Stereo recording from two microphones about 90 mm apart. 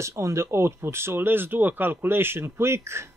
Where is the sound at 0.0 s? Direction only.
30° right (ahead or behind).